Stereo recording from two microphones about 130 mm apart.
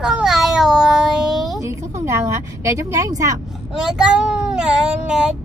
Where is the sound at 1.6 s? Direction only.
25° right (ahead or behind).